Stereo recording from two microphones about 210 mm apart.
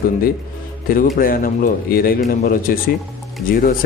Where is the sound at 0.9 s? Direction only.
40° left (ahead or behind).